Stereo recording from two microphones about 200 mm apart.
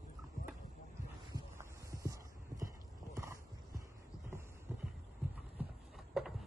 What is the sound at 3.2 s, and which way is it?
Horse, 15° right (ahead or behind).